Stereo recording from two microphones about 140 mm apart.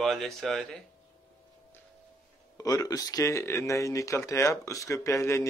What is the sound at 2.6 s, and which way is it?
Speech, 25° left (ahead or behind).